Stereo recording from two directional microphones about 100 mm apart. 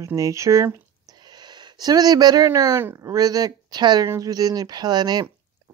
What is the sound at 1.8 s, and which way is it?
Speech, 40° right (ahead or behind).